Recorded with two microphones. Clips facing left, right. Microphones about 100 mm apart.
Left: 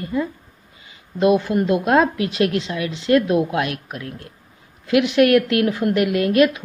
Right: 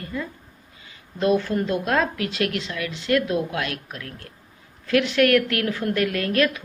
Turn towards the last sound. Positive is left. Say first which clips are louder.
# left 6 dB
turn(degrees=20)  # may be behind; listen again after turning